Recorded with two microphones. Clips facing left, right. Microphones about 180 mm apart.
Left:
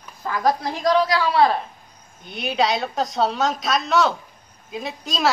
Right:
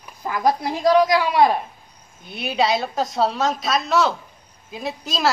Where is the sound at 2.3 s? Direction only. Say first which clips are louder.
Right 1 dB; centre (ahead or behind).